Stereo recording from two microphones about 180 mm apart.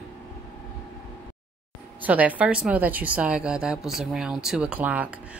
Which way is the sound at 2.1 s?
10° right (ahead or behind).